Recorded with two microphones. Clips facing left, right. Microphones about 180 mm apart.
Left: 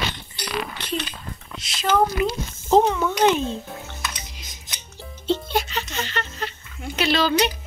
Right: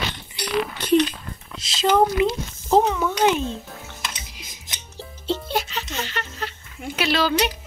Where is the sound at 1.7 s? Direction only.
20° right (ahead or behind).